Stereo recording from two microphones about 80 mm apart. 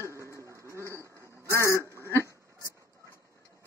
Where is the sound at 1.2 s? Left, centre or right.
Left.